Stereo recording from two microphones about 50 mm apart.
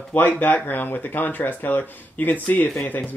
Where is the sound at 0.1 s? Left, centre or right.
Left.